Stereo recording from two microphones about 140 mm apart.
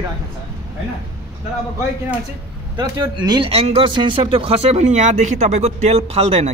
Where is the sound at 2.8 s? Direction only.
30° right (ahead or behind); by 6.5 s 50° right (ahead or behind).